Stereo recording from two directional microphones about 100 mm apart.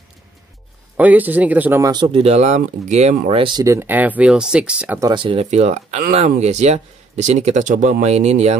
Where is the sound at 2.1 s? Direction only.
90° right.